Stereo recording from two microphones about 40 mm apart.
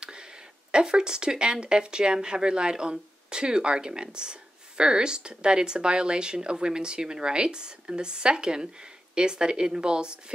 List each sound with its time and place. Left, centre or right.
0.7 s speech: right